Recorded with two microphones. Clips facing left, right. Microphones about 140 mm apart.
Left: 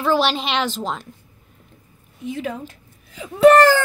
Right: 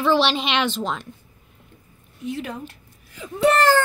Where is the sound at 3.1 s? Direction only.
90° left.